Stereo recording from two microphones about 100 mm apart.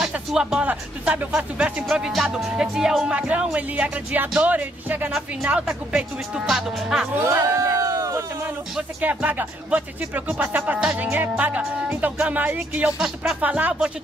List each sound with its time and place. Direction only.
0.0 s speech: 5° right (ahead or behind)
1.9 s music: 5° right (ahead or behind)
3.1 s speech: 10° right (ahead or behind)
7.2 s a sound: 30° right (ahead or behind)
9.0 s speech: 15° right (ahead or behind)
13.4 s speech: 15° right (ahead or behind)